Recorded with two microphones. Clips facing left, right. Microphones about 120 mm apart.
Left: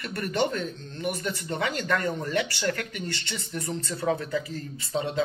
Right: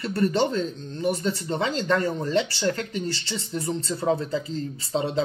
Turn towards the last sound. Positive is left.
turn(degrees=-30)  # may be behind; listen again after turning